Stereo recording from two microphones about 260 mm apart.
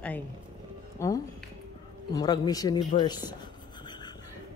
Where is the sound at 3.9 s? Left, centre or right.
Centre.